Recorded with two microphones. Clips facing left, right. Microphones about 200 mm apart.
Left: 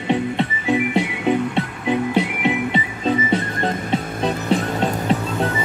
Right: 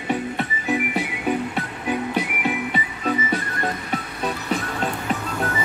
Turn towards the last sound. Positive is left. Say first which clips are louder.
# left 5 dB
turn(degrees=30)  # may be behind; listen again after turning